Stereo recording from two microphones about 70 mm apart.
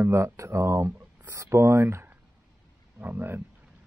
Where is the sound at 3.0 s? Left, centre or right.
Right.